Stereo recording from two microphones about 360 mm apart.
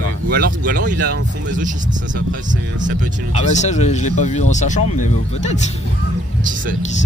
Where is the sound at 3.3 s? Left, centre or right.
Centre.